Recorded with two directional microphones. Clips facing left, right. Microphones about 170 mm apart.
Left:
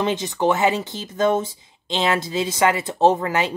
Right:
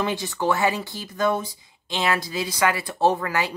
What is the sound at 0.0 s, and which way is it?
Speech, 20° left (ahead or behind).